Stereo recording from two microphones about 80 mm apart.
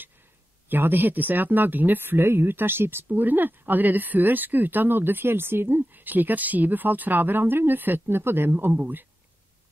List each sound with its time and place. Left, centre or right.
0.7 s speech: right